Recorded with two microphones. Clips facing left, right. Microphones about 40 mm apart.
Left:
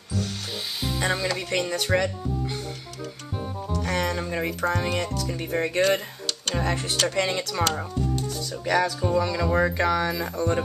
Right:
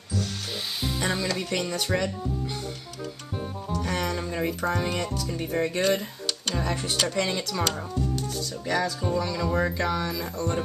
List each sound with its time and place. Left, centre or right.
0.9 s speech: centre
3.6 s music: centre
4.6 s speech: centre
5.3 s speech: centre
7.4 s speech: centre
8.6 s speech: left
10.3 s speech: left